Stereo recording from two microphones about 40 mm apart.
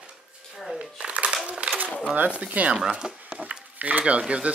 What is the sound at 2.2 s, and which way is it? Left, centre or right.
Speech, right.